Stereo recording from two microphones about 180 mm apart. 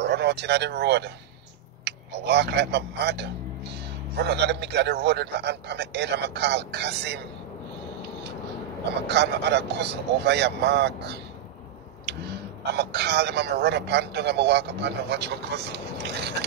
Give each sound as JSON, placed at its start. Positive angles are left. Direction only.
{"t": 0.0, "sound": "speech", "side_deg": -70}
{"t": 9.0, "sound": "speech", "side_deg": -70}